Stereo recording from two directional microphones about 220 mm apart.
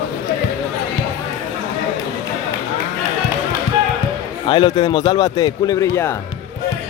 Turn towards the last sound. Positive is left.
turn(degrees=15)  # may be behind; listen again after turning